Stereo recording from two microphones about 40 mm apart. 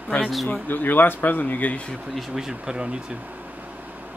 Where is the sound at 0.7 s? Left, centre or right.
Left.